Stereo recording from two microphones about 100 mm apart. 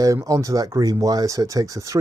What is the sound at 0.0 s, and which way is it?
Speech, 35° right (ahead or behind).